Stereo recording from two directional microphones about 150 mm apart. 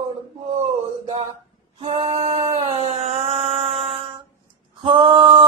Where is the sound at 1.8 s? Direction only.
35° right (ahead or behind).